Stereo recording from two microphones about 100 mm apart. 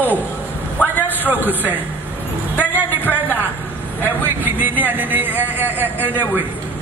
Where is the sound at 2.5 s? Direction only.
15° right (ahead or behind).